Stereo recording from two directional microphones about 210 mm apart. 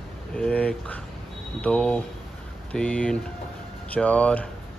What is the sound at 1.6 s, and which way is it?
Speech, 5° left (ahead or behind).